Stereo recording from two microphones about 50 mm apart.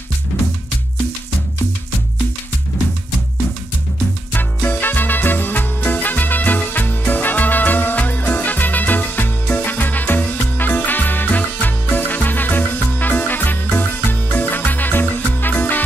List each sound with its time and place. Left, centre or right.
4.3 s music: left